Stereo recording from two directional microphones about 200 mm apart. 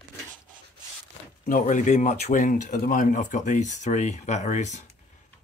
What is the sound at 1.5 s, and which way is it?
Speech, 40° left (ahead or behind).